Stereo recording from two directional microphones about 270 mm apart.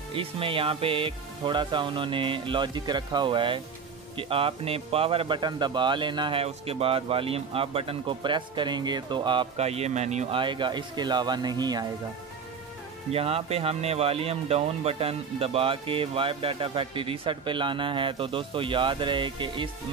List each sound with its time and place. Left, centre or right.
0.1 s speech: centre
13.1 s speech: right